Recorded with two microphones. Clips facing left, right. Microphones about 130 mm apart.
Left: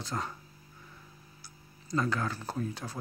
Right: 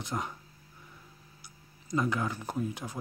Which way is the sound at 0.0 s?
15° right (ahead or behind).